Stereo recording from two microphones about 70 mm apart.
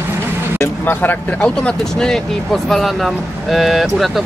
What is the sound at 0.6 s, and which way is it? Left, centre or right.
Speech, left.